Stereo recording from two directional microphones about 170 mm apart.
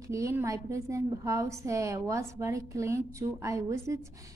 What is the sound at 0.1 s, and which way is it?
A woman's voice, 15° right (ahead or behind).